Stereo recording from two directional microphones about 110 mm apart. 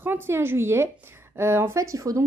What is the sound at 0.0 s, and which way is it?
Speech, 20° right (ahead or behind).